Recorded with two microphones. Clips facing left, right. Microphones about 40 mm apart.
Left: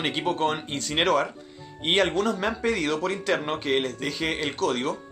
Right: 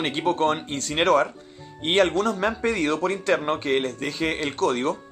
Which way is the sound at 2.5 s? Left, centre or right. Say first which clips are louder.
Right 2 dB; centre.